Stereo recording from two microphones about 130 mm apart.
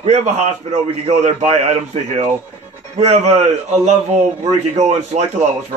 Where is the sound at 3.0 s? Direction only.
60° right (ahead or behind).